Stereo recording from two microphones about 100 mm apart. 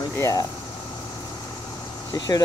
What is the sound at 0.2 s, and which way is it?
Speech, 35° left (ahead or behind).